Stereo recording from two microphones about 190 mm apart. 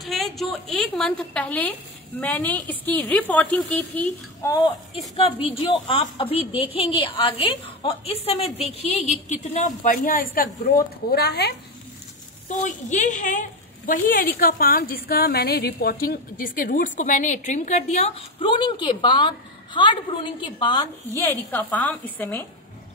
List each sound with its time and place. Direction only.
0.0 s a woman's voice: centre (ahead or behind)
4.9 s a woman's voice: 30° left (ahead or behind); by 10.5 s 45° left (ahead or behind)
11.1 s speech: 55° left (ahead or behind)
12.4 s a woman's voice: 40° left (ahead or behind); by 20.8 s 25° left (ahead or behind)
21.1 s a woman's voice: 15° left (ahead or behind)